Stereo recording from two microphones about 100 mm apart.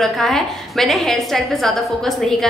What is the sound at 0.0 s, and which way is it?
A woman's voice, centre (ahead or behind).